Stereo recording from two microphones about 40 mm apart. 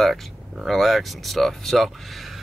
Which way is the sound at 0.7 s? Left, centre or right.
Centre.